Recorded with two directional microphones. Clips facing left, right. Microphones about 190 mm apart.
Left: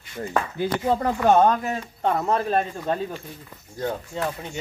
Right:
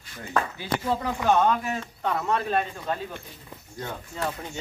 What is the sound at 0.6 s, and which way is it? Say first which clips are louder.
Speech: left 5 dB; 50° left (ahead or behind).